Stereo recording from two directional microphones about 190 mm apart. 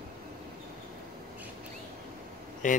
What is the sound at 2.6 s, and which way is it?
Speech, 45° left (ahead or behind).